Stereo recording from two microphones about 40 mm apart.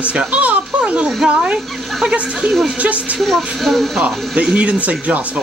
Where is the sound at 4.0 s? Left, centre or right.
Right.